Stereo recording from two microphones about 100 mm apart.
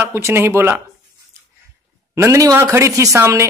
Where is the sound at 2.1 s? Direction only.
30° right (ahead or behind).